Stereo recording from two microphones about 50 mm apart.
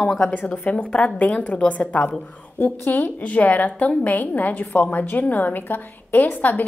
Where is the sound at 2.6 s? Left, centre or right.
Left.